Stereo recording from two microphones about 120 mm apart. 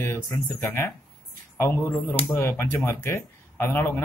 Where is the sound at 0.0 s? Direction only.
25° left (ahead or behind).